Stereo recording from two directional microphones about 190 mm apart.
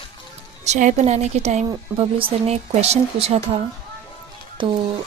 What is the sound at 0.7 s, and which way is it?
A woman's voice, 40° right (ahead or behind).